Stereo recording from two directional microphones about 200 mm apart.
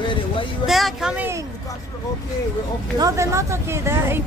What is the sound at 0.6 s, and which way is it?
Speech, centre (ahead or behind).